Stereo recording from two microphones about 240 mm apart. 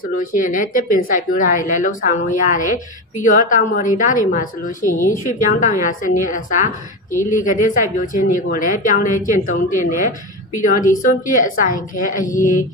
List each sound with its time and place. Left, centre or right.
0.0 s speech: left